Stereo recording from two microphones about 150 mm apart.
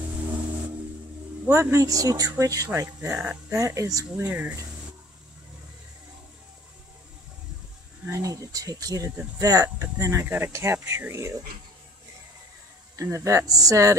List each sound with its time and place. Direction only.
1.4 s speech: 15° right (ahead or behind)
3.1 s speech: 5° right (ahead or behind)
3.5 s speech: 20° right (ahead or behind)
8.1 s speech: 25° right (ahead or behind)
12.9 s speech: 20° right (ahead or behind)